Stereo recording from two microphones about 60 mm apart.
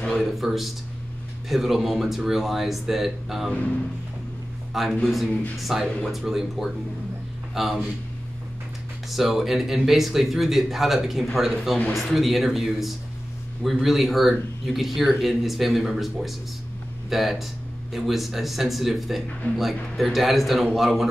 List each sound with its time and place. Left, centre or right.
0.4 s a man's voice: centre
4.7 s a man's voice: centre
9.1 s a man's voice: centre